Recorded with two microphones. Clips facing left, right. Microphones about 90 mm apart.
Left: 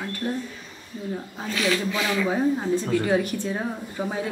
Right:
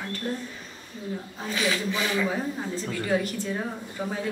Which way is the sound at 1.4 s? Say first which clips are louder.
Left 2 dB; 5° right (ahead or behind).